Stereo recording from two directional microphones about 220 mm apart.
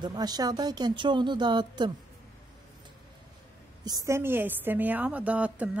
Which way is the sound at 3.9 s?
15° right (ahead or behind).